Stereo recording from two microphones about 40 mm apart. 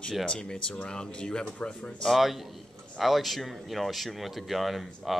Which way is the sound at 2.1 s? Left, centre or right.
Centre.